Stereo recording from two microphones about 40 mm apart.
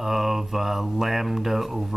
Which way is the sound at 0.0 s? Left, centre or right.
Centre.